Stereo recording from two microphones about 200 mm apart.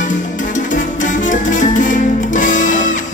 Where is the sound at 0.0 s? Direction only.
40° left (ahead or behind).